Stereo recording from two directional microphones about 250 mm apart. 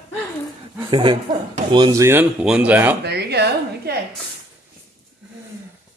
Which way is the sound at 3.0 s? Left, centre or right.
Right.